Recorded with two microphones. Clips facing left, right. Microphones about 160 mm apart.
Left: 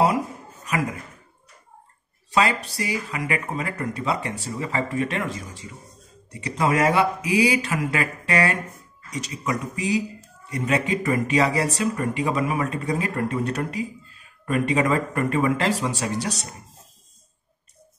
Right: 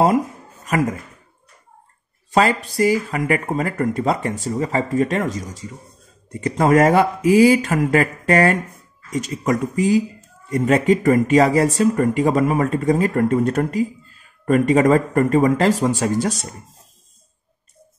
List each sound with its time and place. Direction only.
0.7 s speech: 45° right (ahead or behind)
2.3 s speech: 45° right (ahead or behind)